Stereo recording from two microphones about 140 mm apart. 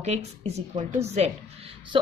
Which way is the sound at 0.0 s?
50° right (ahead or behind).